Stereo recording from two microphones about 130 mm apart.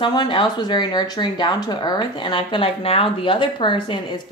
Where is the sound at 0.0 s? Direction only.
35° left (ahead or behind).